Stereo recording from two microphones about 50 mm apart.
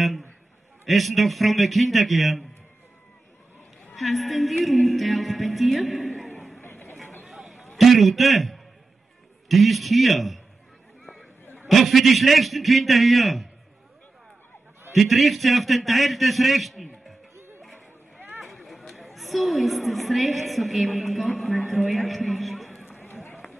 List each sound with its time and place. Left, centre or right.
0.8 s a man's voice: centre
3.9 s music: centre
7.2 s a sound: centre
7.7 s a man's voice: centre
11.7 s a man's voice: centre
15.0 s a man's voice: centre
18.4 s a woman's voice: centre
22.8 s run: left